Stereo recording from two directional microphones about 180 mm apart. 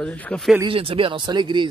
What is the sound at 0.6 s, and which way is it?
Speech, 30° right (ahead or behind).